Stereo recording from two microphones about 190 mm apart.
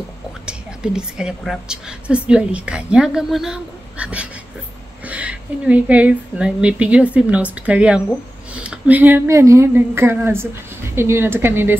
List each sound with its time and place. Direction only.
0.5 s a woman's voice: 5° right (ahead or behind)